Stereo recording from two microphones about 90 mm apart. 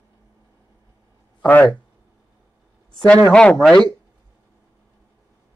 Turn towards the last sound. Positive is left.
turn(degrees=15)  # may be behind; listen again after turning